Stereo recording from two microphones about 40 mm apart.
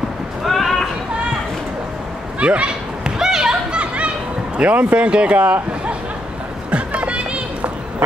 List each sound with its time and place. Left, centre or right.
0.5 s a sound: centre
2.4 s a man's voice: right
3.0 s children playing: centre
3.7 s children playing: right
4.6 s a man's voice: right
6.7 s music: right